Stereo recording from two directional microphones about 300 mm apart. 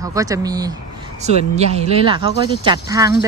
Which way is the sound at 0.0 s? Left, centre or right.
Centre.